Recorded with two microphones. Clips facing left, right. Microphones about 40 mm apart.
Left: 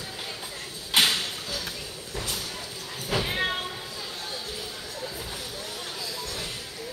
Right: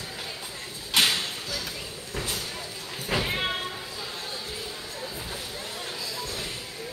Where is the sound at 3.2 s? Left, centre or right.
Centre.